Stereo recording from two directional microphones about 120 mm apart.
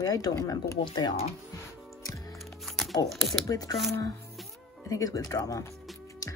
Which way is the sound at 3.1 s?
Centre (ahead or behind).